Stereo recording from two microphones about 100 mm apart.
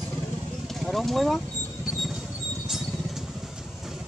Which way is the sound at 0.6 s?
Centre (ahead or behind).